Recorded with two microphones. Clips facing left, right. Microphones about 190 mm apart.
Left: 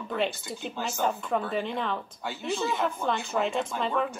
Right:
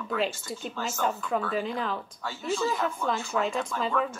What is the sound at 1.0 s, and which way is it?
Speech, centre (ahead or behind).